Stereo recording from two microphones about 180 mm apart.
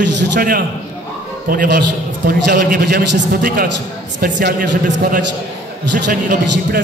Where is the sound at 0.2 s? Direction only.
65° right (ahead or behind).